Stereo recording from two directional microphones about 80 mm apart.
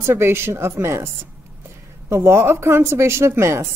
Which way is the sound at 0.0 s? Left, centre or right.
Right.